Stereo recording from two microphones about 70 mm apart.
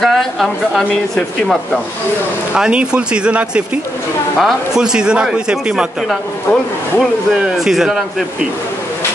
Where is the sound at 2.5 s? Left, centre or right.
Centre.